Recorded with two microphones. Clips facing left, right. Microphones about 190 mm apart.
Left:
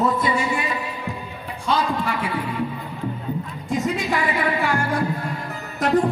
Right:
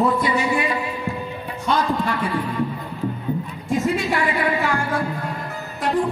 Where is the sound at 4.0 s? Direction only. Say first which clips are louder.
Right 1 dB; 20° left (ahead or behind).